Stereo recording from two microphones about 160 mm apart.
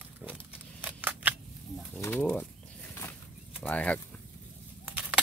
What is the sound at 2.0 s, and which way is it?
Speech, 10° left (ahead or behind).